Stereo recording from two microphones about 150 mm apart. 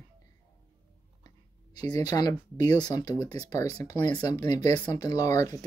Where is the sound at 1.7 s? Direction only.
25° left (ahead or behind).